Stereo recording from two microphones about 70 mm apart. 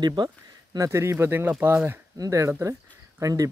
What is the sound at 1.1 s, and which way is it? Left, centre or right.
Speech, right.